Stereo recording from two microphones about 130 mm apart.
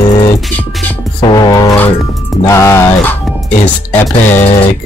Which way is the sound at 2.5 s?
20° left (ahead or behind).